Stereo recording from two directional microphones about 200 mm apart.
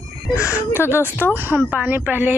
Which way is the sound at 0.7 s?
10° left (ahead or behind).